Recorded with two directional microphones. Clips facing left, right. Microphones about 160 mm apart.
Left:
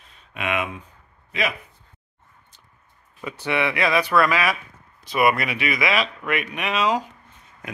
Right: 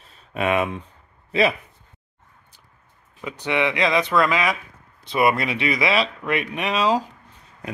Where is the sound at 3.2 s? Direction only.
15° right (ahead or behind).